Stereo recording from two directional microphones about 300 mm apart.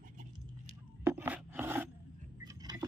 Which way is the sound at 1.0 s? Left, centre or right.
Centre.